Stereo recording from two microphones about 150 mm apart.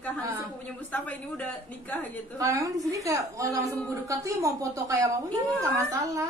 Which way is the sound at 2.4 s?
20° right (ahead or behind).